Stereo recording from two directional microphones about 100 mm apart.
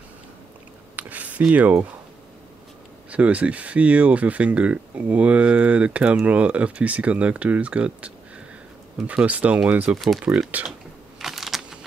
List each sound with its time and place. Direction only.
0.9 s a sound: 15° right (ahead or behind)
1.5 s speech: 15° right (ahead or behind)
3.1 s speech: 15° right (ahead or behind)
9.9 s speech: centre (ahead or behind)
10.6 s speech: 15° right (ahead or behind)
11.1 s keys jangling: 5° right (ahead or behind)